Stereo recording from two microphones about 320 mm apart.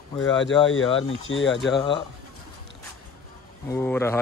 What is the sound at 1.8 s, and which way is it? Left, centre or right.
Speech, centre.